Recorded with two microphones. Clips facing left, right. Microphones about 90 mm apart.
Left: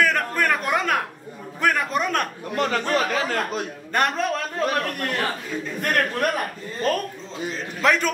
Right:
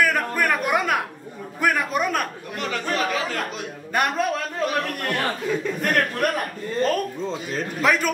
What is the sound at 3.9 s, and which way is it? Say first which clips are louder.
Speech: even; 5° right (ahead or behind).